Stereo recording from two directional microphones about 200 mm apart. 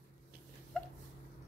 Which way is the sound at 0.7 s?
Centre (ahead or behind).